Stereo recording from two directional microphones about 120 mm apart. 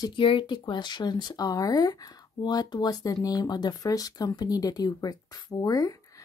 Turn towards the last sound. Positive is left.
turn(degrees=30)  # may be behind; listen again after turning